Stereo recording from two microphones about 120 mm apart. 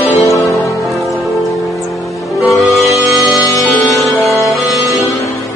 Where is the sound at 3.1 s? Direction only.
25° right (ahead or behind).